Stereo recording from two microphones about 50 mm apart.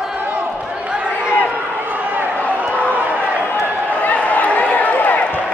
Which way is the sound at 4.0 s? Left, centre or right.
Left.